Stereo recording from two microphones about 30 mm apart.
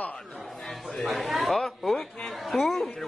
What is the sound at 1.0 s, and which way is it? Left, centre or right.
Speech, centre.